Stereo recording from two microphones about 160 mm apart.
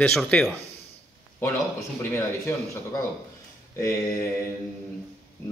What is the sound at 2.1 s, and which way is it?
A man's voice, 15° left (ahead or behind).